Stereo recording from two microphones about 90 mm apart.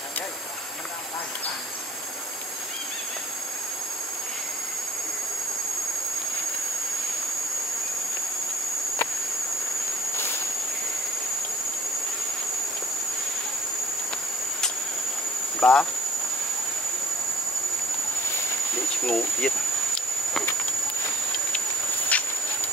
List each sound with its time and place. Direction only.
15.6 s speech: 5° left (ahead or behind)
19.0 s speech: centre (ahead or behind)
22.1 s a sound: 15° left (ahead or behind)